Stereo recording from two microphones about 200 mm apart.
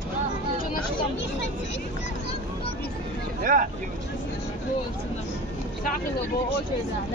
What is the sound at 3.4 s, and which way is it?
Speech, 40° right (ahead or behind).